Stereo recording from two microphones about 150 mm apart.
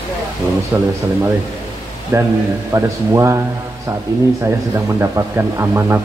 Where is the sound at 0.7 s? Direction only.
20° right (ahead or behind).